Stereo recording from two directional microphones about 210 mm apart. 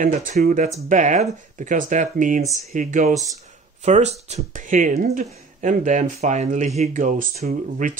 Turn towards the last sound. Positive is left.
turn(degrees=-35)  # may be behind; listen again after turning